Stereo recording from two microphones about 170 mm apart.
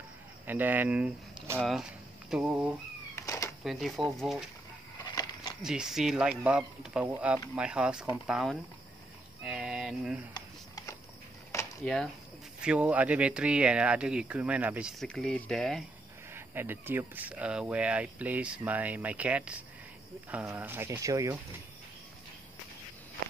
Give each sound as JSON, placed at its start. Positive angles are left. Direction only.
{"t": 0.5, "sound": "speech", "side_deg": -10}
{"t": 3.2, "sound": "cat", "side_deg": 15}
{"t": 3.6, "sound": "speech", "side_deg": 0}
{"t": 5.0, "sound": "a sound", "side_deg": 25}
{"t": 5.6, "sound": "speech", "side_deg": -5}
{"t": 9.4, "sound": "a sound", "side_deg": -5}
{"t": 11.8, "sound": "speech", "side_deg": 5}
{"t": 12.6, "sound": "speech", "side_deg": -10}
{"t": 16.3, "sound": "speech", "side_deg": -15}